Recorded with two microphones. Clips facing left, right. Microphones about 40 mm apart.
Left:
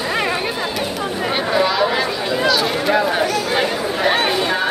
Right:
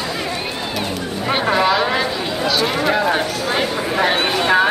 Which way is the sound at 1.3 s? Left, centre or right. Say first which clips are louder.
Right 3 dB; centre.